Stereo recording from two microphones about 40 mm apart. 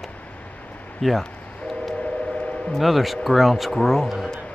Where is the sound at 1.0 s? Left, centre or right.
Centre.